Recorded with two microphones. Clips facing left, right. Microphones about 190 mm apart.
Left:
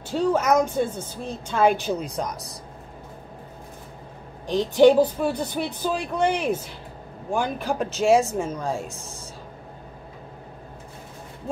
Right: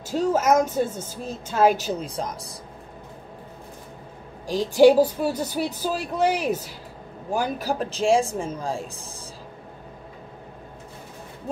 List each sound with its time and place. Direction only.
0.3 s speech: 5° right (ahead or behind)
4.5 s speech: 5° right (ahead or behind)